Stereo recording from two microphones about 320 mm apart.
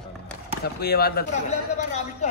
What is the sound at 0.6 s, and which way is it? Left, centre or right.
Speech, left.